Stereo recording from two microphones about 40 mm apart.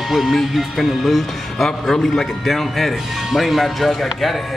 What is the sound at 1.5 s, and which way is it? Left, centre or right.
Speech, centre.